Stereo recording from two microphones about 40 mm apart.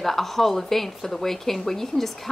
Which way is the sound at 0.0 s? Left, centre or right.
Centre.